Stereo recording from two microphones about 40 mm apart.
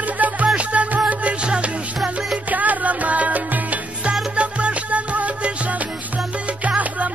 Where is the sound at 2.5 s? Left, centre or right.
Right.